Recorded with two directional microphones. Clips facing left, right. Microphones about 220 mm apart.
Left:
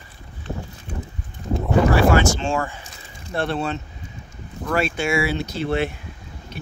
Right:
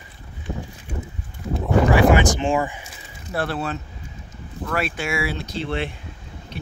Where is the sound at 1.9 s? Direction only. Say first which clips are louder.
Right 3 dB; 15° right (ahead or behind).